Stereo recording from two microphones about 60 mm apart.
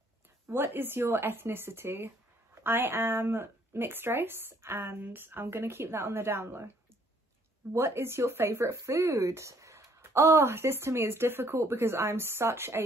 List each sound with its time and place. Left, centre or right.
0.5 s speech: right
7.7 s speech: right